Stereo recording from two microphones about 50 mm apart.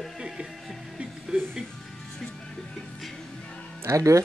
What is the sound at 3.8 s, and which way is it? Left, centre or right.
Speech, right.